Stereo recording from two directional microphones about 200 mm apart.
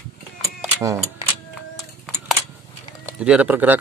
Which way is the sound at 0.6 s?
10° right (ahead or behind).